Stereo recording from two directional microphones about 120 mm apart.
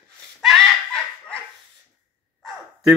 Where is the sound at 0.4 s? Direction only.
Centre (ahead or behind).